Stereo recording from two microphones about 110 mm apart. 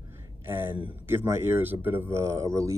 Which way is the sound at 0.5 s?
20° right (ahead or behind).